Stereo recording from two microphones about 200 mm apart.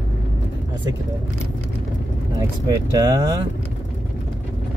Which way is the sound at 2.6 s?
15° right (ahead or behind).